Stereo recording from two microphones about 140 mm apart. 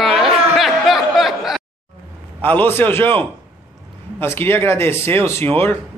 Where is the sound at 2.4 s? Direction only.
15° left (ahead or behind).